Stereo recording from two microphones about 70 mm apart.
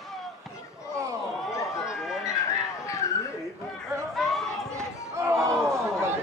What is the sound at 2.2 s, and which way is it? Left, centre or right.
Vehicle, left.